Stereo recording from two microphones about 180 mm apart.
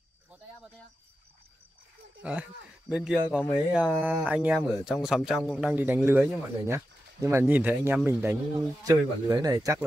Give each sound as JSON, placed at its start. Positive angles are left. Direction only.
{"t": 2.2, "sound": "speech", "side_deg": -5}